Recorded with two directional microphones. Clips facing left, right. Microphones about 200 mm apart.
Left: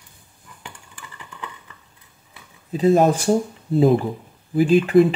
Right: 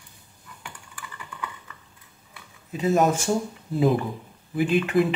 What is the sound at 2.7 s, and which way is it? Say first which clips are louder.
Speech: left 5 dB; 30° left (ahead or behind).